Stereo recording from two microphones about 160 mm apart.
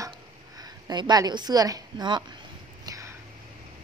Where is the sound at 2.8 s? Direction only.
20° right (ahead or behind).